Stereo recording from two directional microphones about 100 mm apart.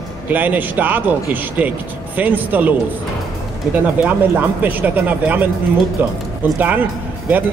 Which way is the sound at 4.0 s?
20° right (ahead or behind).